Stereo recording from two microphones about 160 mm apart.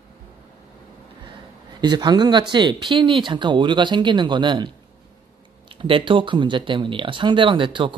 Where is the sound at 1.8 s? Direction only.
25° right (ahead or behind).